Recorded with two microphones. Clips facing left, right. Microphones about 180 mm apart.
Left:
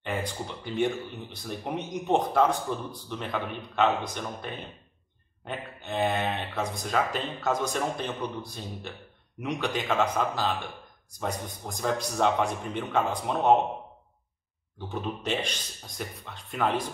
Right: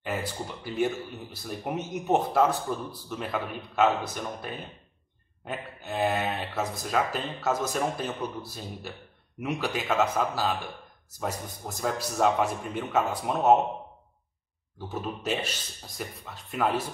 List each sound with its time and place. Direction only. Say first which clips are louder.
0.0 s speech: even; 5° right (ahead or behind)
14.9 s speech: even; 5° right (ahead or behind)